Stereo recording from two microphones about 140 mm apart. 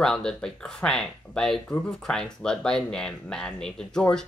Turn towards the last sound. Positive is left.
turn(degrees=5)  # may be behind; listen again after turning